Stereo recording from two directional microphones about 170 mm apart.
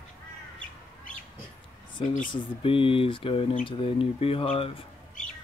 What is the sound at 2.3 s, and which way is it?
Speech, 30° left (ahead or behind).